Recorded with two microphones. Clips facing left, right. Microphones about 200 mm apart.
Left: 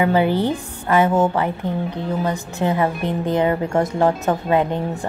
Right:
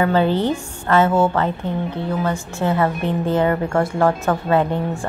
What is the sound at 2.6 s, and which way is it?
A woman's voice, 15° left (ahead or behind).